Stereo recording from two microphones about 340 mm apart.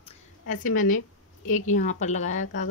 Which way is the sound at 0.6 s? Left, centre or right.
Left.